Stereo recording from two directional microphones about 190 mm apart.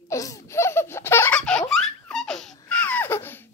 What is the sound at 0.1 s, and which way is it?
Baby laughter, 15° left (ahead or behind).